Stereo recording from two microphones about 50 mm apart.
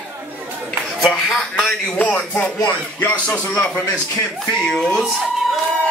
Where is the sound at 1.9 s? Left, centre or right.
Left.